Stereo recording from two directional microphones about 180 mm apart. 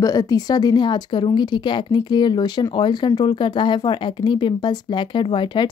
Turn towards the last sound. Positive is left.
turn(degrees=25)  # may be behind; listen again after turning